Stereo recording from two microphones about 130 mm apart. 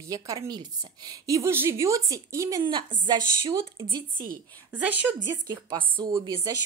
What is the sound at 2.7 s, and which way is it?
A woman's voice, 35° right (ahead or behind).